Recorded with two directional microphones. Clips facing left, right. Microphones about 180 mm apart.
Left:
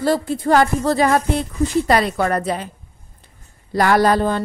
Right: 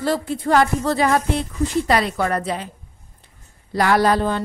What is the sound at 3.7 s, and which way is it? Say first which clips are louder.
Speech: left 2 dB; 45° left (ahead or behind).